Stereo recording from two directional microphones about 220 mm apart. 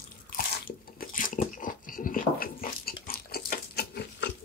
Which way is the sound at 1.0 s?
40° left (ahead or behind).